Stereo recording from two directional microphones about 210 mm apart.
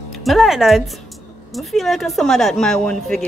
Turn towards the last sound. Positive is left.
turn(degrees=5)  # may be behind; listen again after turning